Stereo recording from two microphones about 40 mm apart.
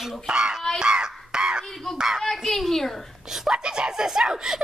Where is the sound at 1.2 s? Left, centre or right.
Centre.